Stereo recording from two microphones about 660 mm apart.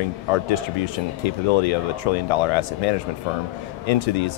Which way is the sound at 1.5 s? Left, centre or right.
Left.